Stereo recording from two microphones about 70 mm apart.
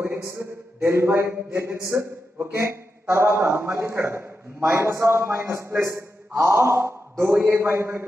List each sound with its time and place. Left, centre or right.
0.0 s a man's voice: right